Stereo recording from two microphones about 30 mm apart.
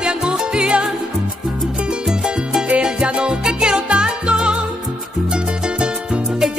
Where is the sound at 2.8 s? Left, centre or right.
Right.